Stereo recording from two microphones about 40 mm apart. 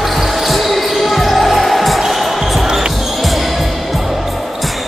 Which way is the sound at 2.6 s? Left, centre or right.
Centre.